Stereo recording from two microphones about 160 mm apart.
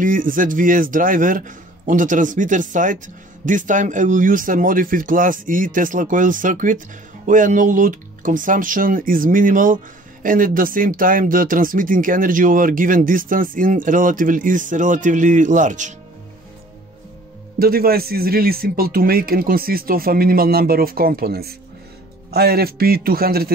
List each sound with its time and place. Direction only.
0.0 s speech: 55° right (ahead or behind)
17.6 s speech: 70° right (ahead or behind)